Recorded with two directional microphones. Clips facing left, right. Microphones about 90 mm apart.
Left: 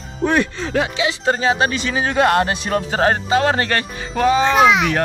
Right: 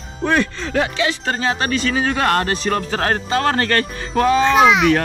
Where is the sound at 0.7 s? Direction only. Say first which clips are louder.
Right 1 dB; 15° left (ahead or behind).